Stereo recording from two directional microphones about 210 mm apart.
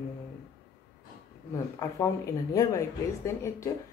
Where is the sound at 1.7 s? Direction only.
15° left (ahead or behind).